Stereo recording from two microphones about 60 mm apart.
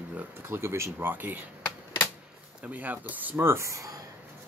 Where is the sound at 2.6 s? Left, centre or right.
Right.